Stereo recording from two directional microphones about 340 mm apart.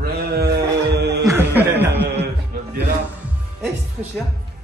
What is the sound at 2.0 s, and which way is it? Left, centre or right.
Music, right.